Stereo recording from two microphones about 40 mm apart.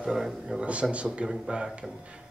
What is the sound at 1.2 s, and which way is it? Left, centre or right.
Speech, centre.